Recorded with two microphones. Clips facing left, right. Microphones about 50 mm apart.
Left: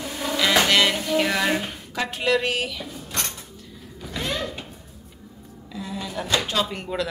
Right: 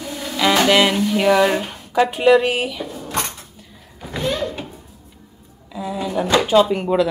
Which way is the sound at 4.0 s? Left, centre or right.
Right.